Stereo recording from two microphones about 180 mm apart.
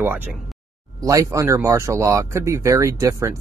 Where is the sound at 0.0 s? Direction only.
10° right (ahead or behind).